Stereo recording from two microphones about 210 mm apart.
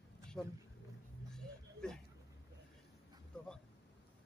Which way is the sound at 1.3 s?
5° left (ahead or behind).